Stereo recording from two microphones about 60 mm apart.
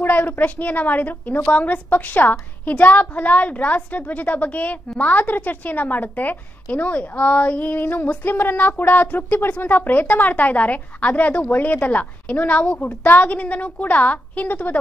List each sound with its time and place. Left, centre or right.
0.0 s a woman's voice: left